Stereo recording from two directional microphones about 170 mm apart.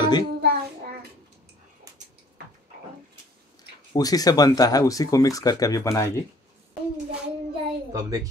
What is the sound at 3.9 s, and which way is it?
Speech, 20° left (ahead or behind).